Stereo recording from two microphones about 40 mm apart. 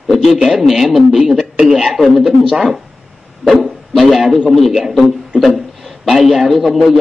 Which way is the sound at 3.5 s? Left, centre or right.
Centre.